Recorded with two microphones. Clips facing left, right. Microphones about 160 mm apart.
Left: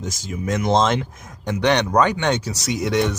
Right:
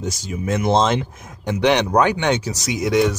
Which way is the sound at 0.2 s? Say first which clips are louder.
Even; 10° right (ahead or behind).